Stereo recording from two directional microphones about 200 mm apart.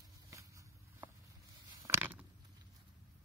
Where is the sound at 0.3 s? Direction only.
15° right (ahead or behind).